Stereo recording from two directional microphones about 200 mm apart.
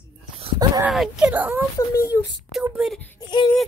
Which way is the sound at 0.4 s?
20° right (ahead or behind).